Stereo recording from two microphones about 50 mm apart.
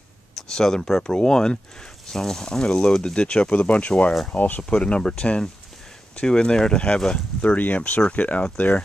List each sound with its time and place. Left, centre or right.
0.4 s speech: centre
7.4 s speech: left